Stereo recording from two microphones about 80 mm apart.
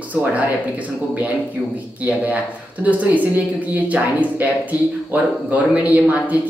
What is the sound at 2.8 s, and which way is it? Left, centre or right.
Speech, centre.